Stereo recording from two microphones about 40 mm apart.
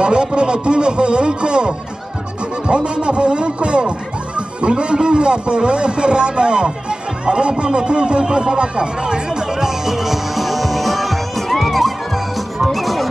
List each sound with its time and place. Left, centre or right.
0.0 s a man's voice: right; by 11.9 s centre
12.5 s music: centre